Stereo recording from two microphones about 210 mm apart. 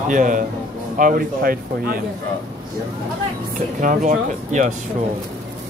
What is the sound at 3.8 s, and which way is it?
Speech, 40° right (ahead or behind).